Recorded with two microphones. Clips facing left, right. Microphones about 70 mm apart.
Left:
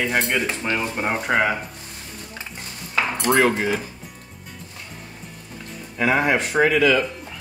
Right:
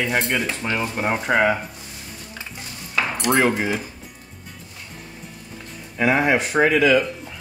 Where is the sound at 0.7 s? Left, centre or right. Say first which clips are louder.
Right 3 dB; centre.